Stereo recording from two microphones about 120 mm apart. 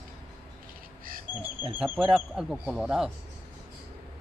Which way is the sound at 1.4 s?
10° right (ahead or behind).